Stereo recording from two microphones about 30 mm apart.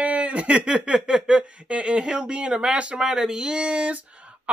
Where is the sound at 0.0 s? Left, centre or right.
Right.